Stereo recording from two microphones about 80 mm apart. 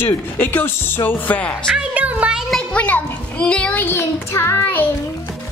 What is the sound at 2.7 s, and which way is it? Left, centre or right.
A child's voice, centre.